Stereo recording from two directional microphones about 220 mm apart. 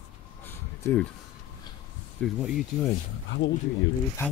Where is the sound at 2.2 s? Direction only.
Centre (ahead or behind).